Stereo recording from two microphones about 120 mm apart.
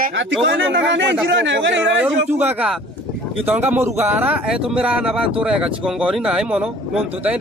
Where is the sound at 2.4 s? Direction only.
15° right (ahead or behind).